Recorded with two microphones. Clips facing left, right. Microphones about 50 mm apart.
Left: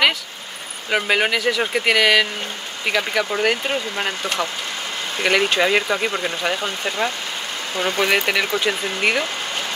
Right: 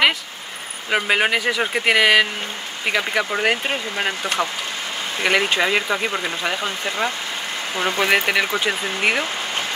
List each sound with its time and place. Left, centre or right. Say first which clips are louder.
0.8 s speech: even; centre